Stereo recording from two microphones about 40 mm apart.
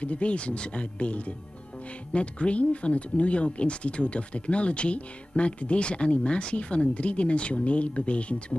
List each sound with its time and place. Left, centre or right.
0.0 s speech: left